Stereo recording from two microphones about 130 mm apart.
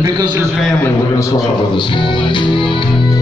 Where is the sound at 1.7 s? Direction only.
35° left (ahead or behind).